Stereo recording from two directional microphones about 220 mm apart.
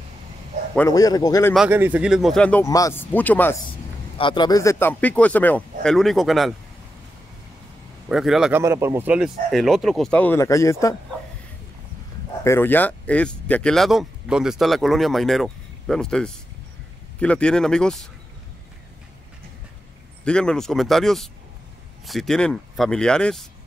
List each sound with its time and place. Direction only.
0.7 s speech: 15° left (ahead or behind)
1.5 s speech: 5° right (ahead or behind)
4.2 s speech: 20° left (ahead or behind); by 6.5 s centre (ahead or behind)
8.1 s speech: centre (ahead or behind); by 11.0 s 15° left (ahead or behind)
12.4 s speech: 10° left (ahead or behind)
20.2 s speech: 5° left (ahead or behind)